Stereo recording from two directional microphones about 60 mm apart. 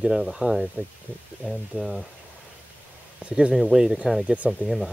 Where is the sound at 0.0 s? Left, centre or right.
Centre.